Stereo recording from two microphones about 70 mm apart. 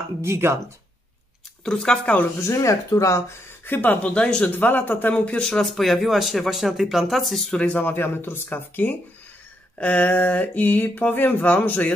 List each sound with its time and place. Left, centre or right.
0.2 s speech: right
1.6 s speech: centre
2.4 s speech: left
3.6 s speech: left
4.6 s speech: left
5.1 s speech: centre
7.5 s speech: centre
7.8 s speech: left